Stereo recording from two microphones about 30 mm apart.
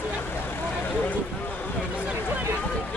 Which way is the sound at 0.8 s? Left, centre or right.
Left.